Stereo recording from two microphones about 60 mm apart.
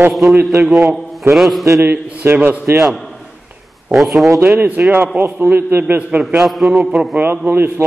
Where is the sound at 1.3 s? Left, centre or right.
Centre.